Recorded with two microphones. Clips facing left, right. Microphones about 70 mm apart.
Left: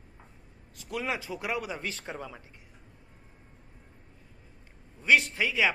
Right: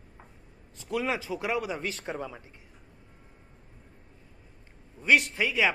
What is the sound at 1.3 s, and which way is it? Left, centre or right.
A man's voice, centre.